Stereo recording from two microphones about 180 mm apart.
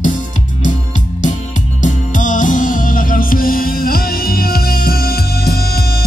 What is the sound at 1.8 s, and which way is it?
Music, 45° left (ahead or behind).